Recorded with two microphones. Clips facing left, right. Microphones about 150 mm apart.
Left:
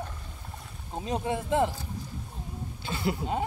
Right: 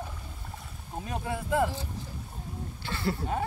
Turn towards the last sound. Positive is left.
turn(degrees=20)  # may be behind; listen again after turning